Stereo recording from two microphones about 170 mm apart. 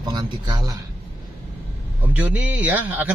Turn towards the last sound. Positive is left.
turn(degrees=-10)  # may be behind; listen again after turning